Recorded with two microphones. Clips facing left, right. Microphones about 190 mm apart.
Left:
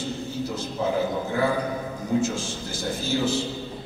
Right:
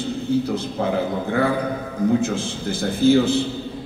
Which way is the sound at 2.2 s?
60° right (ahead or behind).